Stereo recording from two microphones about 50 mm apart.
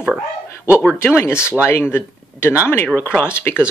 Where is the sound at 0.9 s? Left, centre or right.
Left.